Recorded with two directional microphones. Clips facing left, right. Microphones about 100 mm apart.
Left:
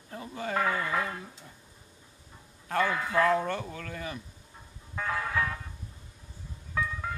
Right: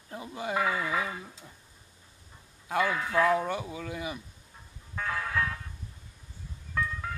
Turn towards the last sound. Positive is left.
turn(degrees=5)  # may be behind; listen again after turning